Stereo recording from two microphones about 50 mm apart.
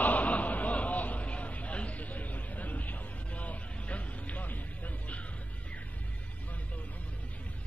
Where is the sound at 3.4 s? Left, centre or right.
Left.